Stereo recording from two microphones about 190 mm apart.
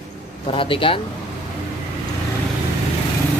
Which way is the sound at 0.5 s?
25° left (ahead or behind).